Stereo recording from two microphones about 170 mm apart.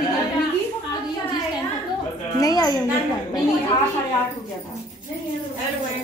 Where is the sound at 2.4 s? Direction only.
20° left (ahead or behind).